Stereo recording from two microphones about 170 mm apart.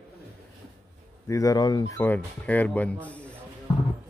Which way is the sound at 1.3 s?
20° left (ahead or behind).